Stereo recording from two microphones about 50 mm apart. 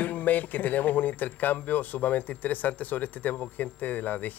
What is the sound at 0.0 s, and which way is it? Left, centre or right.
Speech, left.